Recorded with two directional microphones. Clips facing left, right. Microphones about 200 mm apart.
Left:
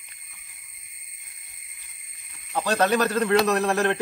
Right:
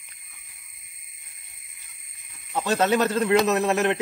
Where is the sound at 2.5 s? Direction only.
20° right (ahead or behind).